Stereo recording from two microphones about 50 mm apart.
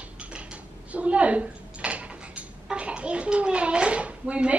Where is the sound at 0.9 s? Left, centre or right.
Right.